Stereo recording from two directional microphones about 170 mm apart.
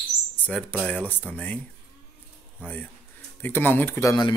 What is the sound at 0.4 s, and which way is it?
Speech, 10° left (ahead or behind).